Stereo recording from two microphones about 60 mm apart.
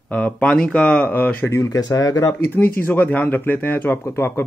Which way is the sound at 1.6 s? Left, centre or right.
Left.